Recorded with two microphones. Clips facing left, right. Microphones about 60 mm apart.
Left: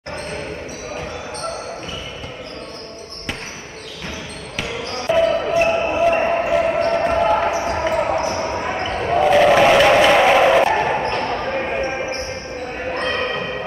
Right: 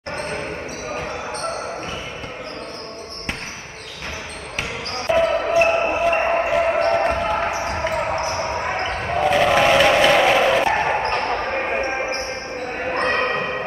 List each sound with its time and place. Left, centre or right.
4.6 s basketball bounce: right
6.1 s basketball bounce: right; by 7.9 s centre
7.9 s basketball bounce: centre
8.6 s basketball bounce: right
9.2 s a sound: centre
10.7 s a sound: centre
11.0 s basketball bounce: right